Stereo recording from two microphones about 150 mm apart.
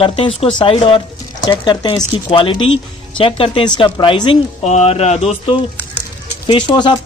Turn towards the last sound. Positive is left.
turn(degrees=30)  # may be behind; listen again after turning